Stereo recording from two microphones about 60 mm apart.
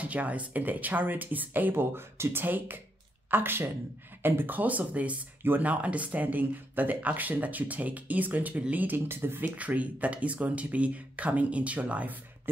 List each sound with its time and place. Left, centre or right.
0.0 s speech: right
2.4 s speech: right
9.6 s speech: right